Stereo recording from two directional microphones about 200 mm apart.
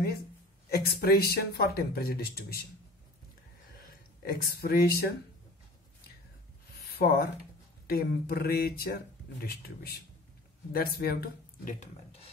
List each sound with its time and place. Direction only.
0.7 s speech: 50° left (ahead or behind)
4.2 s speech: 50° left (ahead or behind)
6.9 s speech: 50° left (ahead or behind)
10.7 s speech: 50° left (ahead or behind)